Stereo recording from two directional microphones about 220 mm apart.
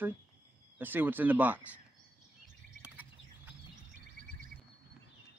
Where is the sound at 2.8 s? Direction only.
5° right (ahead or behind).